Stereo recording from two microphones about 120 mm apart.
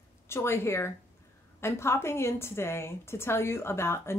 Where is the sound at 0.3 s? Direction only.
20° left (ahead or behind).